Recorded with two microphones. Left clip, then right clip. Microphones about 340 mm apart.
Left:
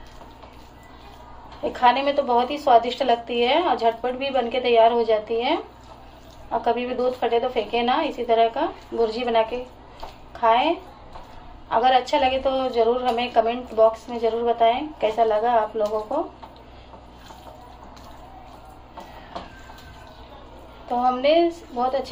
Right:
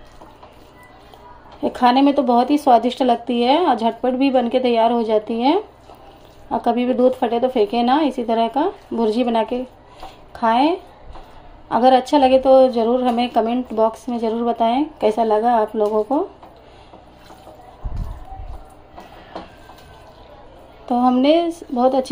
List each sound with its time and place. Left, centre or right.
1.6 s a woman's voice: right
6.6 s a woman's voice: right
11.7 s a woman's voice: right
21.0 s a woman's voice: right